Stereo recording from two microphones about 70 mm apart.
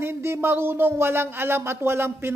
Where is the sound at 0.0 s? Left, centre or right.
Right.